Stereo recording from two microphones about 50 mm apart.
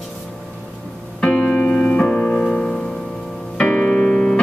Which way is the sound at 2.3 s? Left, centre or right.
Centre.